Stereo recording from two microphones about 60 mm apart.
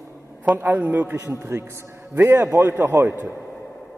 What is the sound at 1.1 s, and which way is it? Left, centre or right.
A man's voice, right.